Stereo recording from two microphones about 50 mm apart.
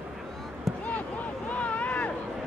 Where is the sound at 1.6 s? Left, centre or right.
Left.